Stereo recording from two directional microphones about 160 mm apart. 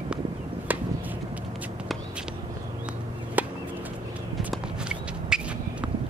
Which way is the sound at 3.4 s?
10° right (ahead or behind).